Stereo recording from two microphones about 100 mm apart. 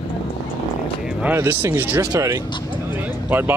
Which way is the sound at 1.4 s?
25° right (ahead or behind).